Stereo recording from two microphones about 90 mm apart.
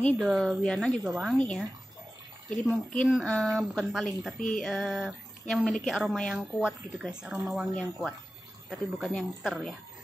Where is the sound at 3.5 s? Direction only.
5° right (ahead or behind).